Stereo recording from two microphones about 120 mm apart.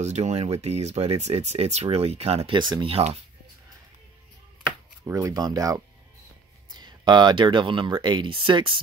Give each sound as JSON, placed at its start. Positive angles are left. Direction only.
{"t": 0.0, "sound": "speech", "side_deg": -70}
{"t": 2.5, "sound": "speech", "side_deg": -40}
{"t": 5.0, "sound": "speech", "side_deg": -25}